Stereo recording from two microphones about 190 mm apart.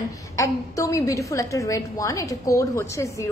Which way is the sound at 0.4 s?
15° left (ahead or behind).